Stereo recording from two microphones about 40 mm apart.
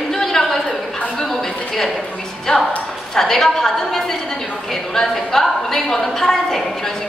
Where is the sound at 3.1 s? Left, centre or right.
Centre.